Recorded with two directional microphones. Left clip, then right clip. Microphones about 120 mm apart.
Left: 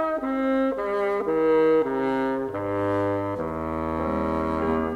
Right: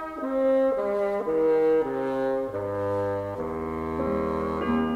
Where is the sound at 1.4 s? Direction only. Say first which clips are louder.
Left 2 dB; 40° left (ahead or behind).